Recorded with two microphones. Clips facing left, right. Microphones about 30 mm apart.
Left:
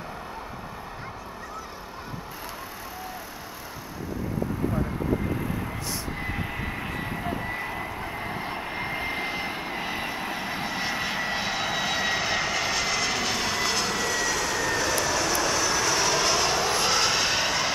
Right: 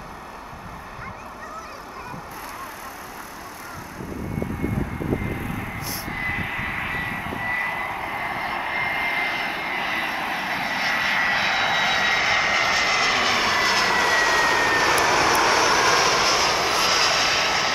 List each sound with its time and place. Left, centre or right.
6.0 s vehicle: right